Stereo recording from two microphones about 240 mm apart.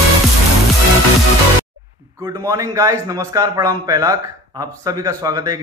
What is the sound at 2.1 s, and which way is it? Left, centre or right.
A man's voice, centre.